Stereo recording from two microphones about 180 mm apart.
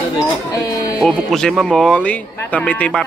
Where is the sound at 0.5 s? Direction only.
20° left (ahead or behind).